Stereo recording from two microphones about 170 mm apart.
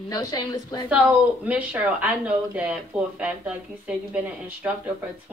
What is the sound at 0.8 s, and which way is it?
Speech, 5° right (ahead or behind).